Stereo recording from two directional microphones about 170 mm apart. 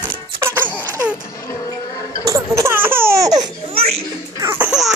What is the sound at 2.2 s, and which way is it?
Laughter, 15° right (ahead or behind).